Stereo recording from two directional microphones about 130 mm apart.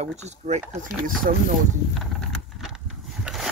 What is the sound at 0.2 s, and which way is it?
Speech, 60° right (ahead or behind).